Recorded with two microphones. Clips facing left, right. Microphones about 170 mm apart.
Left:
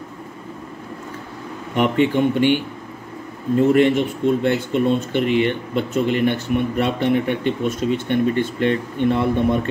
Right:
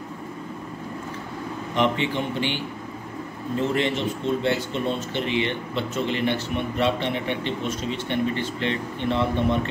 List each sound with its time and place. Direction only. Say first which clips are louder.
2.0 s speech: left 9 dB; 50° left (ahead or behind)